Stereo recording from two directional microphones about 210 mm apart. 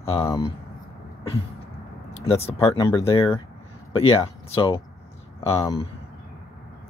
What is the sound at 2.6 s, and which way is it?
Speech, 25° left (ahead or behind).